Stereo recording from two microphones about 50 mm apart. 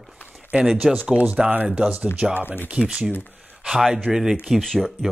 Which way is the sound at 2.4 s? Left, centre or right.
Left.